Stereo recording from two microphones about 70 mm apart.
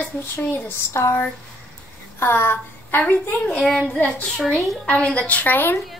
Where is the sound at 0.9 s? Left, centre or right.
Left.